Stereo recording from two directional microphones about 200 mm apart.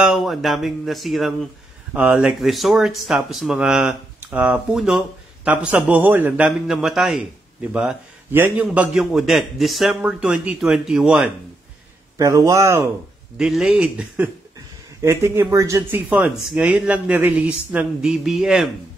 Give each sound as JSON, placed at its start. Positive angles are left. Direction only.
{"t": 0.0, "sound": "speech", "side_deg": 0}
{"t": 12.2, "sound": "speech", "side_deg": -15}
{"t": 13.4, "sound": "speech", "side_deg": -5}